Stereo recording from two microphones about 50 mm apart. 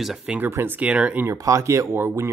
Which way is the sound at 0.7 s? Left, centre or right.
Right.